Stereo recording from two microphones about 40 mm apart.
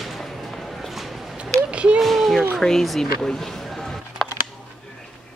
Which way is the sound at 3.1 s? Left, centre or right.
Centre.